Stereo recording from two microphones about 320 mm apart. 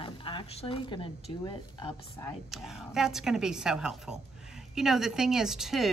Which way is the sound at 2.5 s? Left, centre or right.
Centre.